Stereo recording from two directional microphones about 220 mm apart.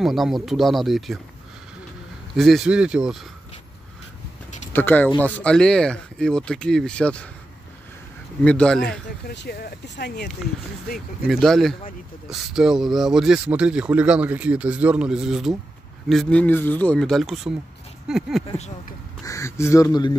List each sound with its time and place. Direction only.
0.0 s speech: centre (ahead or behind)
2.3 s speech: centre (ahead or behind)
4.7 s speech: 10° left (ahead or behind)
8.5 s speech: 5° left (ahead or behind)
9.3 s speech: 50° left (ahead or behind)
11.2 s speech: centre (ahead or behind)
19.2 s speech: 15° left (ahead or behind)